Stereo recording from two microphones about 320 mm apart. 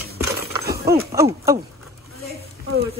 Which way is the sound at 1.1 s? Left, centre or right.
Centre.